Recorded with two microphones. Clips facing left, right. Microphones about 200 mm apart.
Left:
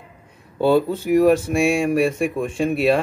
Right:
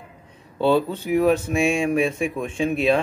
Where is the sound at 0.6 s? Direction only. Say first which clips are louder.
Left 2 dB; 10° left (ahead or behind).